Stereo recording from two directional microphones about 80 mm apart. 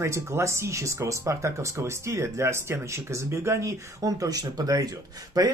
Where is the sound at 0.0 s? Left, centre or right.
Right.